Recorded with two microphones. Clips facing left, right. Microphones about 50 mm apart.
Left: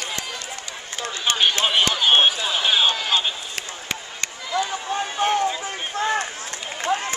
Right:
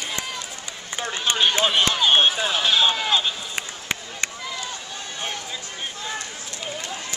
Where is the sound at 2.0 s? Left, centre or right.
Centre.